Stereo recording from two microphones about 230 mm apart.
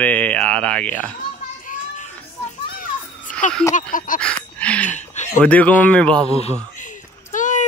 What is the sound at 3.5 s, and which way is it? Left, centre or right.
Speech, centre.